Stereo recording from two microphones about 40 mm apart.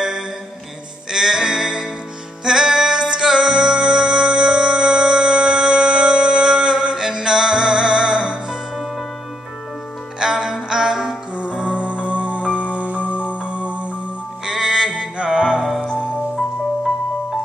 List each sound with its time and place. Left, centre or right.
1.1 s music: centre
10.1 s music: centre; by 13.8 s right
14.4 s music: centre